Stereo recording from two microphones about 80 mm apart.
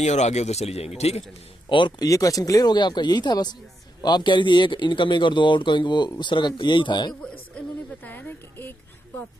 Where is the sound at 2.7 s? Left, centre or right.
Left.